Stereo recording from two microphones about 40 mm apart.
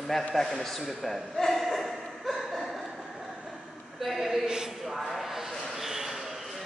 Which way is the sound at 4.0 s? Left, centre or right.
Centre.